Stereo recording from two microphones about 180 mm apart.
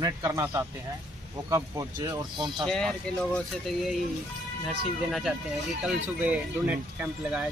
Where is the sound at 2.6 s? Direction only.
5° left (ahead or behind).